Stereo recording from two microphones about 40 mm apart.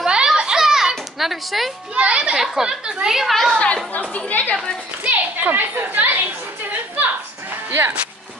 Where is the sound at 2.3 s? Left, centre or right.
Centre.